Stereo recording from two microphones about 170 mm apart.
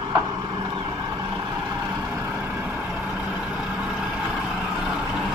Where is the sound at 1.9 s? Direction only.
10° right (ahead or behind).